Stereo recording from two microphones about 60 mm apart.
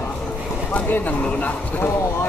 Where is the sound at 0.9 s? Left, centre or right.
Left.